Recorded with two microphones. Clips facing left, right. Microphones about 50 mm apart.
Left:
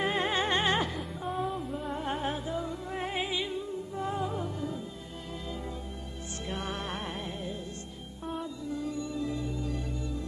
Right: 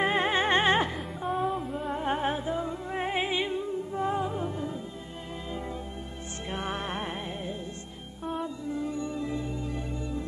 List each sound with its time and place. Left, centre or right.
0.0 s music: right
0.9 s music: centre
2.0 s music: right
6.5 s music: right